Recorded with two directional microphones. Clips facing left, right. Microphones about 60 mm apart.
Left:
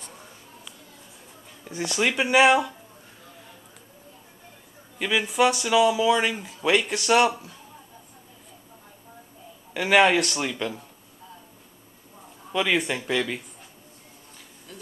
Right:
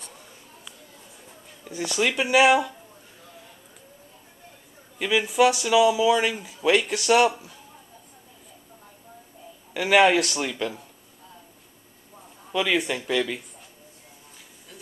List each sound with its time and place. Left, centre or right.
1.7 s speech: centre
4.9 s speech: centre
9.8 s speech: centre
12.5 s speech: centre